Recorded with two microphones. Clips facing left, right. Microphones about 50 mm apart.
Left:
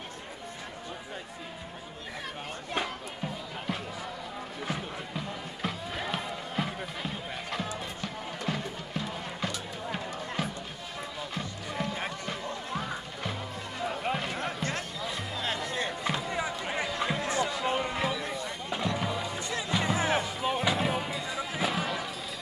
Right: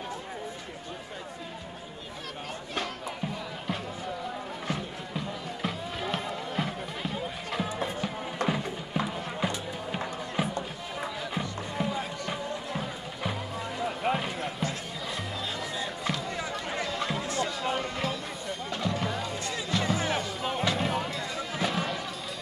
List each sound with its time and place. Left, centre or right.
4.6 s music: centre
8.5 s music: centre
13.2 s music: centre
16.0 s music: centre
17.3 s a sound: centre
18.9 s music: centre